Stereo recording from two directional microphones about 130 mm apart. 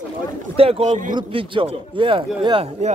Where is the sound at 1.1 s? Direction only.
40° right (ahead or behind).